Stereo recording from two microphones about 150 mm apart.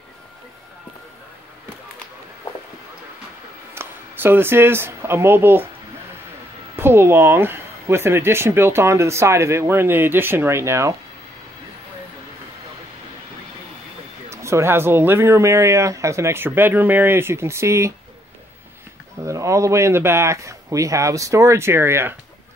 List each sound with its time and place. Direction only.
3.7 s speech: 15° right (ahead or behind)
6.8 s speech: 15° right (ahead or behind)
14.3 s speech: 20° right (ahead or behind)
19.2 s speech: 20° right (ahead or behind)